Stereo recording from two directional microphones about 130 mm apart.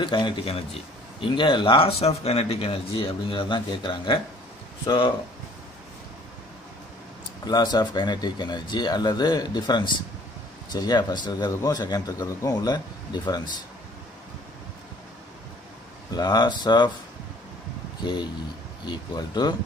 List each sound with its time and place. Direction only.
0.0 s speech: 40° left (ahead or behind)
7.4 s speech: 30° left (ahead or behind)
16.2 s speech: 30° left (ahead or behind)
18.0 s speech: 35° left (ahead or behind)